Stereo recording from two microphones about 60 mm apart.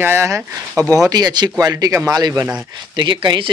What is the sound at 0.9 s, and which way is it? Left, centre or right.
Speech, right.